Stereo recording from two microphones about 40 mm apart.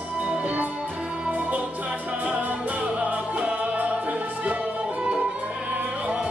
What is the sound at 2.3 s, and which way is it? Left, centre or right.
Music, right.